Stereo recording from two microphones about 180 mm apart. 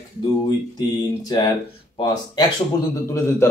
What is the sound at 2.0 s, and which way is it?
Speech, 25° left (ahead or behind).